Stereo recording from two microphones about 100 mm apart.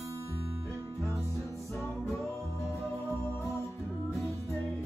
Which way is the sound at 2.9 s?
25° right (ahead or behind).